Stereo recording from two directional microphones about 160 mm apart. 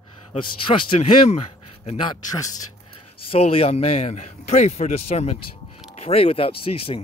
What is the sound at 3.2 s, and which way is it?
Speech, 35° left (ahead or behind).